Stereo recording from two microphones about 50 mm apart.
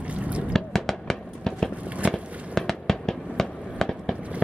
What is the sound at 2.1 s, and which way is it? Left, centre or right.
Fireworks, centre.